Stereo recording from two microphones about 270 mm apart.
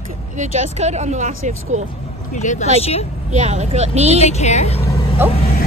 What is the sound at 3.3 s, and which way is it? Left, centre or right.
Speech, right.